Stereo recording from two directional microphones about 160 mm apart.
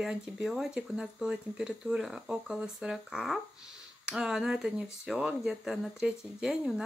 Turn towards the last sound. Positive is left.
turn(degrees=-5)  # may be behind; listen again after turning